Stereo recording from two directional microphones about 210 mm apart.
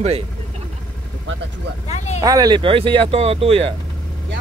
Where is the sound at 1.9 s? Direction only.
30° left (ahead or behind).